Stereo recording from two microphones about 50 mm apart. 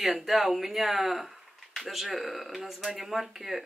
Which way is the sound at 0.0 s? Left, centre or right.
Centre.